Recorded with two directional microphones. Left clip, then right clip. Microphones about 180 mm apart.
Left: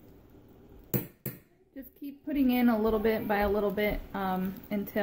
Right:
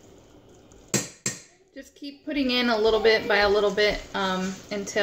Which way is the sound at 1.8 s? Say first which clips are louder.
Right 4 dB; 40° left (ahead or behind).